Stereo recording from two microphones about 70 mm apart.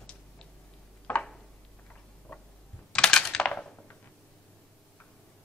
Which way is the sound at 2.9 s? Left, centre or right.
Centre.